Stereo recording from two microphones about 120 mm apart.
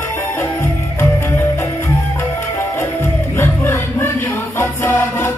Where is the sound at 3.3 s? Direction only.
20° left (ahead or behind).